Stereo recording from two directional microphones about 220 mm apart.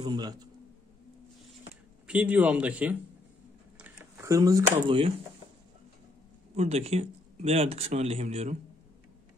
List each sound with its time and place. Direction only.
0.0 s speech: 20° right (ahead or behind)
2.0 s a man's voice: 5° right (ahead or behind); by 5.2 s 25° right (ahead or behind)
6.5 s speech: 30° right (ahead or behind)